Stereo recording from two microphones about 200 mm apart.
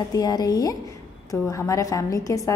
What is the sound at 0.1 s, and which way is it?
A woman's voice, 20° left (ahead or behind).